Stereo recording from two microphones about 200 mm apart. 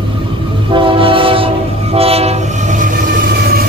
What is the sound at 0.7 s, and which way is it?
Train, 25° right (ahead or behind).